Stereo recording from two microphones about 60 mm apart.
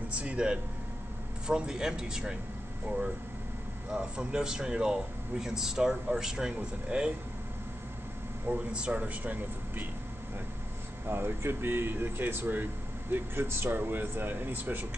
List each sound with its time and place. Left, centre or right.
0.1 s speech: right
3.9 s speech: centre
8.7 s speech: centre
11.1 s speech: right